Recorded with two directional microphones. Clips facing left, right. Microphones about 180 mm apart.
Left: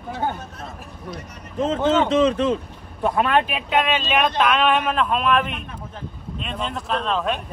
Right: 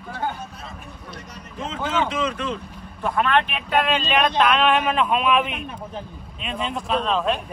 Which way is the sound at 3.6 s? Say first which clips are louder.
Even; centre (ahead or behind).